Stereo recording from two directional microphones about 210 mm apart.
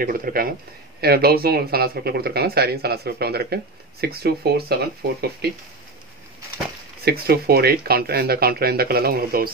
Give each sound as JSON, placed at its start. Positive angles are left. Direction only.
{"t": 0.0, "sound": "speech", "side_deg": -45}
{"t": 7.1, "sound": "speech", "side_deg": -45}